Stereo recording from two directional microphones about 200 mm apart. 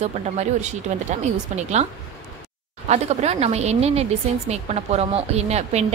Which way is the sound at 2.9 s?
35° right (ahead or behind).